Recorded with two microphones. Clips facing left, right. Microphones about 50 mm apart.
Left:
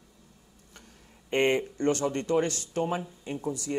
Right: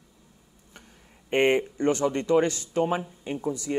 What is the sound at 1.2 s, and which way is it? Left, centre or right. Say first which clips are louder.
Speech: right 3 dB; right.